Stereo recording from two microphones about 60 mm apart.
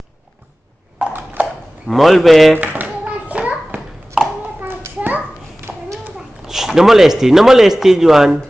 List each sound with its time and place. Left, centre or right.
1.1 s a sound: right
1.9 s speech: centre
2.5 s hands: right
4.6 s children playing: right
5.7 s a sound: centre
6.4 s speech: centre